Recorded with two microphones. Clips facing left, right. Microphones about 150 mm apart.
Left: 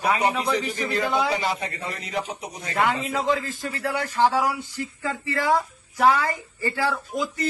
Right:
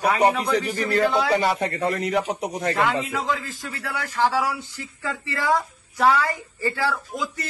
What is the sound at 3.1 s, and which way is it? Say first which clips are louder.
A man's voice: left 3 dB; 25° left (ahead or behind).